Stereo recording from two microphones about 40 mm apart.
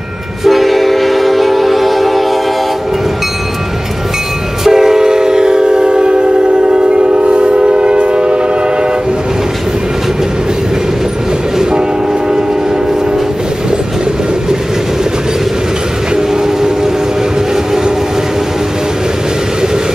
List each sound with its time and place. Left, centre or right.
0.5 s train: centre
4.6 s train: centre; by 8.4 s right